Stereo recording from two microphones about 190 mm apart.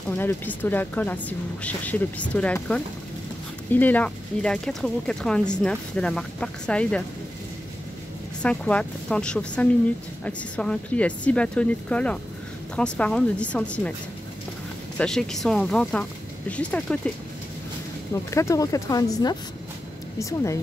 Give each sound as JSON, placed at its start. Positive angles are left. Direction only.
{"t": 0.1, "sound": "a woman's voice", "side_deg": 10}
{"t": 8.4, "sound": "a woman's voice", "side_deg": 5}
{"t": 15.0, "sound": "speech", "side_deg": 0}
{"t": 18.3, "sound": "a woman's voice", "side_deg": 15}